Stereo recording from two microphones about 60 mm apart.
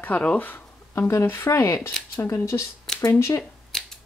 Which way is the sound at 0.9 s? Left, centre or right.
Left.